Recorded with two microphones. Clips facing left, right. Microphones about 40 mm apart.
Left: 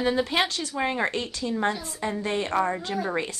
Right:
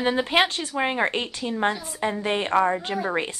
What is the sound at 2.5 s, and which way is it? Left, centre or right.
Speech, centre.